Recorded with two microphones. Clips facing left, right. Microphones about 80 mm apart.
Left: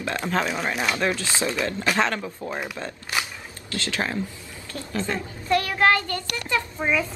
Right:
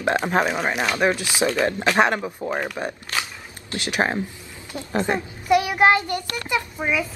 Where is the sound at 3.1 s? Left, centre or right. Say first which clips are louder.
Left 1 dB; centre.